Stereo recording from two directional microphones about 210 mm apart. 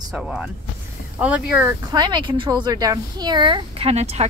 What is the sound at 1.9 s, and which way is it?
Speech, 20° right (ahead or behind).